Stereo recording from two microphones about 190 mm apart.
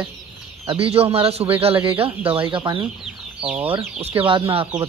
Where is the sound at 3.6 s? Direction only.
30° right (ahead or behind).